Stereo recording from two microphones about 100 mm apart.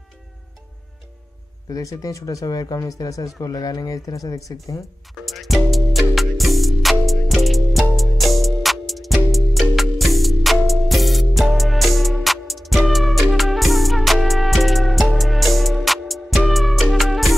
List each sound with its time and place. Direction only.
1.7 s speech: 35° left (ahead or behind)
5.1 s music: centre (ahead or behind)